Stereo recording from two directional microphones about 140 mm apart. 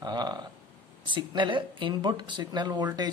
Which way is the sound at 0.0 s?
30° right (ahead or behind).